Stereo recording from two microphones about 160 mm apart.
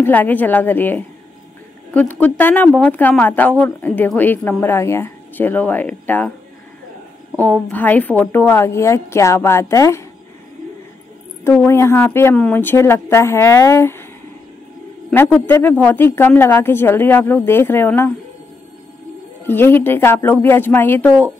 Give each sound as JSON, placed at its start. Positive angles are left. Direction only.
{"t": 0.0, "sound": "a woman's voice", "side_deg": 10}
{"t": 7.3, "sound": "a woman's voice", "side_deg": 10}
{"t": 11.4, "sound": "a woman's voice", "side_deg": 15}
{"t": 15.0, "sound": "a woman's voice", "side_deg": 5}
{"t": 19.4, "sound": "a woman's voice", "side_deg": 15}